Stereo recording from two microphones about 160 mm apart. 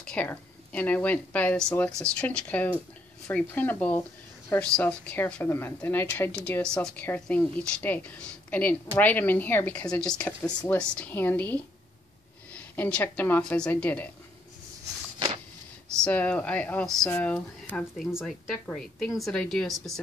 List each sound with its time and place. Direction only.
0.0 s a woman's voice: 10° left (ahead or behind)
15.1 s a sound: 30° right (ahead or behind)
16.0 s a woman's voice: 10° left (ahead or behind)